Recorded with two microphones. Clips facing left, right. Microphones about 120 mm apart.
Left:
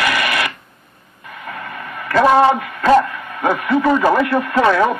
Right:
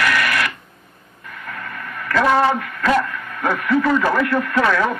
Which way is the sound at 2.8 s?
30° left (ahead or behind).